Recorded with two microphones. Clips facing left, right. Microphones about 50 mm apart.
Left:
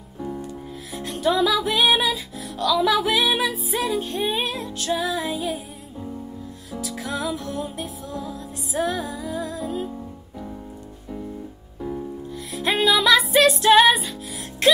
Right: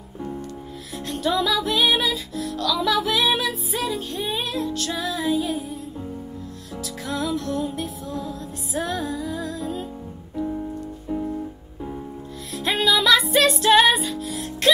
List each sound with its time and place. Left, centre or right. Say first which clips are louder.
0.9 s music: left 2 dB; centre
4.1 s music: left 2 dB; left
4.7 s music: left 2 dB; centre
6.8 s music: even; centre
12.5 s music: left 1 dB; centre